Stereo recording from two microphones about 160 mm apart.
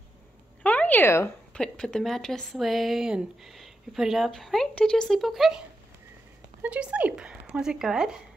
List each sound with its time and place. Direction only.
0.6 s speech: 10° left (ahead or behind)
6.6 s speech: 10° right (ahead or behind)